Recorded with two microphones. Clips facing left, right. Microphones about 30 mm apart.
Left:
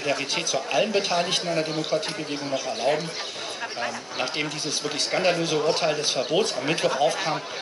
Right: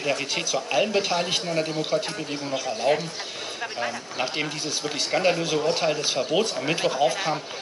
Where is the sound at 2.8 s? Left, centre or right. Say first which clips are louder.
Right 2 dB; left.